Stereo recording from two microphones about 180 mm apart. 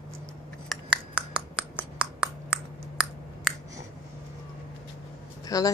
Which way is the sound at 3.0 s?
5° right (ahead or behind).